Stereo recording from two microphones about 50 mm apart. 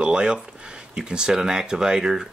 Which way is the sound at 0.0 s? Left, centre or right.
Centre.